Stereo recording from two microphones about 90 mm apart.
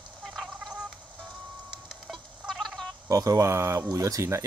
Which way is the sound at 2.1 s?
Centre (ahead or behind).